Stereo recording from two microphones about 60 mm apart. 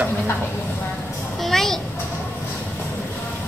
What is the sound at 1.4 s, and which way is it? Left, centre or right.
Speech, centre.